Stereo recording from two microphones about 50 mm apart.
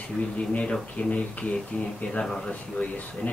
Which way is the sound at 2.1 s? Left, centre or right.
Centre.